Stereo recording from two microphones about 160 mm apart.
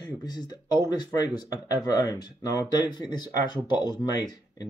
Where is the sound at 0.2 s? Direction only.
25° left (ahead or behind).